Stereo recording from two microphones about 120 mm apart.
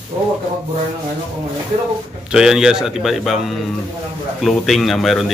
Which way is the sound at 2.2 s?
5° right (ahead or behind).